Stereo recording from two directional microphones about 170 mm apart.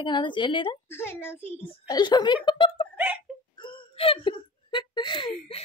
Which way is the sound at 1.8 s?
25° left (ahead or behind).